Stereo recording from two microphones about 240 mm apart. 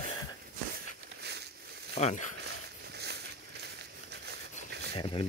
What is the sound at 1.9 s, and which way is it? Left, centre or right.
Speech, left.